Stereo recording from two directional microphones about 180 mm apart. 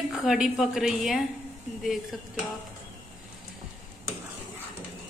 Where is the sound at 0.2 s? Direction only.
Centre (ahead or behind).